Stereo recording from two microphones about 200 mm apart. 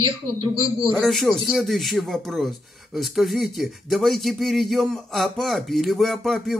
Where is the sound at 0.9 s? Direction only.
Centre (ahead or behind).